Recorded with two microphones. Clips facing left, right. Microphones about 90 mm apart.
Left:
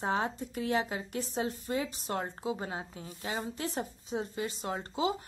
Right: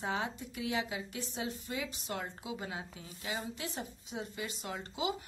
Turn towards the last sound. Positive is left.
turn(degrees=35)  # may be behind; listen again after turning